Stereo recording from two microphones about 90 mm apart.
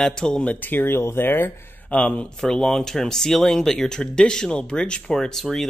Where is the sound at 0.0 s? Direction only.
5° left (ahead or behind); by 2.0 s 25° left (ahead or behind).